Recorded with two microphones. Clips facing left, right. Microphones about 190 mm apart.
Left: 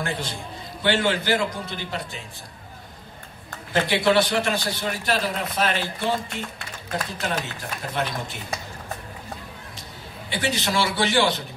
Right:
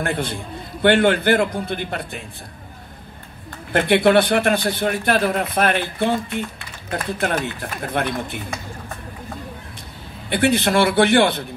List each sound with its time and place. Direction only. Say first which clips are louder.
0.0 s a man's voice: right 5 dB; 55° right (ahead or behind)
3.7 s a man's voice: right 5 dB; 55° right (ahead or behind)
10.3 s a man's voice: right 8 dB; 55° right (ahead or behind)